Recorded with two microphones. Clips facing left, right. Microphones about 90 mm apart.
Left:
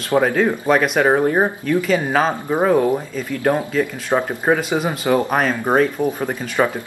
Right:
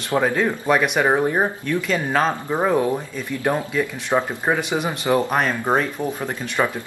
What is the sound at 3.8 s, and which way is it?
Speech, 15° left (ahead or behind).